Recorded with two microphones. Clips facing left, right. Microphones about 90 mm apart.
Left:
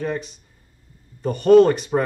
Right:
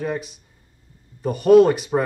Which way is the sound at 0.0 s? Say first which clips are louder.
Even; 5° right (ahead or behind).